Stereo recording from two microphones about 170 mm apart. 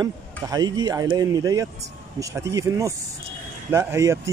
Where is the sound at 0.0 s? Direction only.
25° right (ahead or behind).